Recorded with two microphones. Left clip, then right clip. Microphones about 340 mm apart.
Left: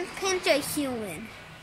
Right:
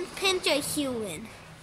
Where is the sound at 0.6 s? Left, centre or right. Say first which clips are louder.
Even; centre.